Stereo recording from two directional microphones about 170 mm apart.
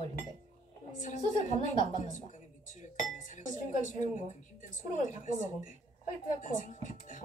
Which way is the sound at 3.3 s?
45° left (ahead or behind).